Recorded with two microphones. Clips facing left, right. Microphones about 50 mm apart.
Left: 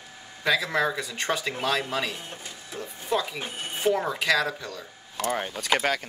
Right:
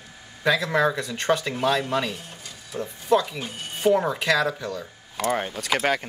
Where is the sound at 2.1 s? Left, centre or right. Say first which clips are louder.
Left 1 dB; left.